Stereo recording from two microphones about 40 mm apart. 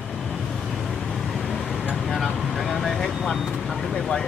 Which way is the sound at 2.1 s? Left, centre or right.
Centre.